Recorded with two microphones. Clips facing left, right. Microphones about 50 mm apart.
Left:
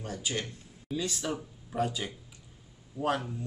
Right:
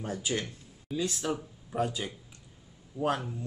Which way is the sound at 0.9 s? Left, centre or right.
Centre.